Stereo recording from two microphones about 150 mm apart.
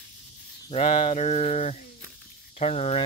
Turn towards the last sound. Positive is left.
turn(degrees=45)  # may be behind; listen again after turning